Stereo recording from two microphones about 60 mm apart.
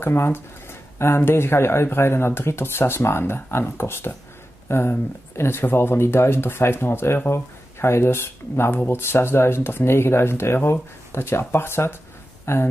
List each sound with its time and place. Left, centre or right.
0.0 s speech: left